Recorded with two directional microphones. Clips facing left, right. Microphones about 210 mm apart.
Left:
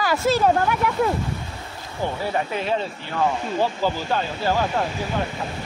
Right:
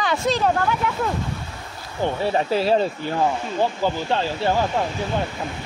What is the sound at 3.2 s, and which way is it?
Speech, 15° right (ahead or behind).